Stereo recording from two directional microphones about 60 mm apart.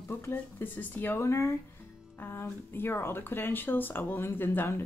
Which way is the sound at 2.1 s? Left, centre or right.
Left.